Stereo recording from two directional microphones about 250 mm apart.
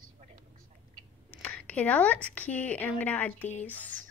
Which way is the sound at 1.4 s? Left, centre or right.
Centre.